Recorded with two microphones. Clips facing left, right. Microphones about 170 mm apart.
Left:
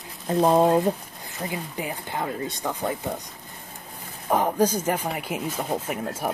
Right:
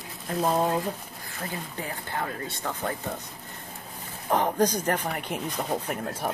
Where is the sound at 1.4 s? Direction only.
15° left (ahead or behind).